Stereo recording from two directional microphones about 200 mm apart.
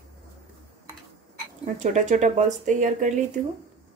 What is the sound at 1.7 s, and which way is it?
Speech, 40° right (ahead or behind).